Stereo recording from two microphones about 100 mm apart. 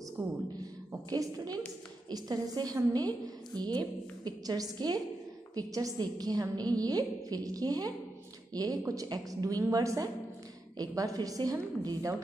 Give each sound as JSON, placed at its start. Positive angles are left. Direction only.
{"t": 1.1, "sound": "a woman's voice", "side_deg": -40}